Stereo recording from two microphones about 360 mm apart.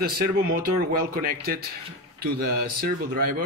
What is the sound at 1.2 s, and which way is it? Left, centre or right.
Speech, right.